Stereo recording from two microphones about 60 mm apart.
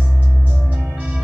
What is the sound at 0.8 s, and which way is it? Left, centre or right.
Throbbing, right.